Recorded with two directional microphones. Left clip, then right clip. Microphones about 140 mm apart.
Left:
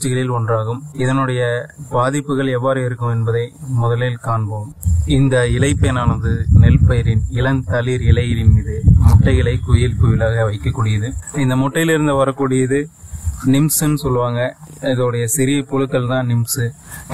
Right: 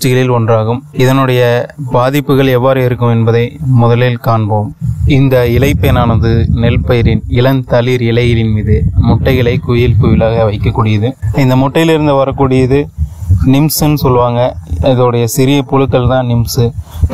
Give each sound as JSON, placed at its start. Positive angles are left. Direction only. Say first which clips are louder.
{"t": 0.0, "sound": "speech", "louder": "right 10 dB", "side_deg": -55}
{"t": 5.3, "sound": "a man's voice", "louder": "right 7 dB", "side_deg": -40}